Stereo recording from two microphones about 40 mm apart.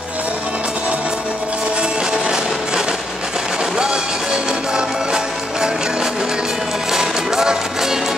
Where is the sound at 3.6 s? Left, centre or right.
Centre.